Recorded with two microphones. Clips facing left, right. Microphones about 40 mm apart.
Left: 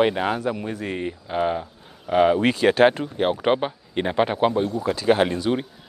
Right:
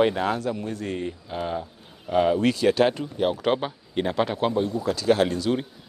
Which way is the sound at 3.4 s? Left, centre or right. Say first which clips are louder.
Left 3 dB; left.